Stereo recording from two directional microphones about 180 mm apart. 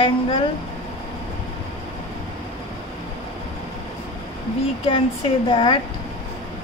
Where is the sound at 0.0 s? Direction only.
30° left (ahead or behind).